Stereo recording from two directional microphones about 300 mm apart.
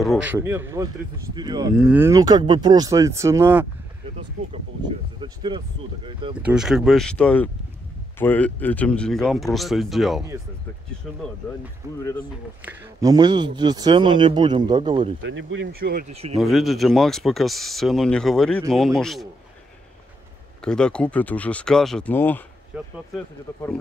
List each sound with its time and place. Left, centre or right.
0.0 s a man's voice: centre
4.8 s a man's voice: centre
6.4 s speech: centre
12.6 s a man's voice: centre
15.2 s speech: right
16.3 s speech: centre
20.6 s speech: centre
22.7 s speech: centre